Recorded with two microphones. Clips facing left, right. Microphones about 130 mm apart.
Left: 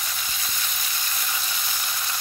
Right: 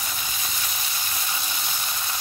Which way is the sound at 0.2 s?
20° right (ahead or behind).